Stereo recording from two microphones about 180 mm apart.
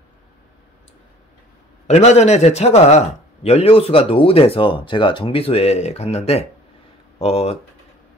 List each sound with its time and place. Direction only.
1.9 s speech: 40° left (ahead or behind)